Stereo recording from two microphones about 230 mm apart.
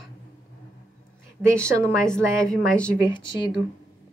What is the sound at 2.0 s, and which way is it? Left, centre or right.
Speech, centre.